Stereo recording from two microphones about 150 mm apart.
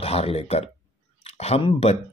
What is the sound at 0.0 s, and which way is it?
Speech, 40° left (ahead or behind).